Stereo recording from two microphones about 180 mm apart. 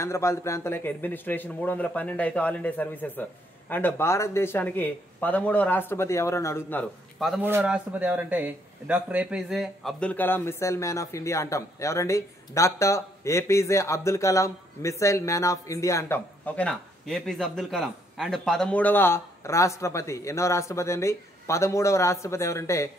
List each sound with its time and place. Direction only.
0.0 s speech: 15° left (ahead or behind)